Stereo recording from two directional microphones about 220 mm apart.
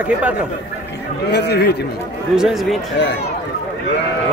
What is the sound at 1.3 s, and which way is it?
Speech, 50° left (ahead or behind).